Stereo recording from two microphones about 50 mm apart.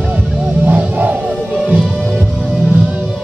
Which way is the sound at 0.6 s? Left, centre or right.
Right.